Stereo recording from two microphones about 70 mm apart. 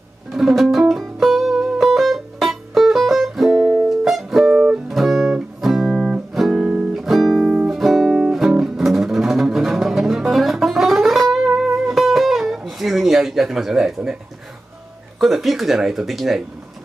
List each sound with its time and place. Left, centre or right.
0.3 s music: centre
6.6 s music: centre
6.9 s music: centre
15.1 s a sound: centre